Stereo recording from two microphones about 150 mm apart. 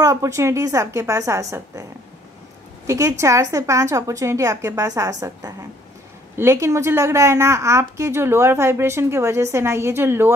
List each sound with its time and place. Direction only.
0.0 s a woman's voice: 20° right (ahead or behind)
2.9 s a woman's voice: 20° right (ahead or behind)